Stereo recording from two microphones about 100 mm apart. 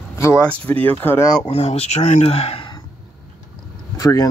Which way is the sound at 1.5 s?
85° left.